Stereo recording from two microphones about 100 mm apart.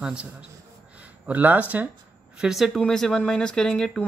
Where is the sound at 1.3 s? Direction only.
15° right (ahead or behind).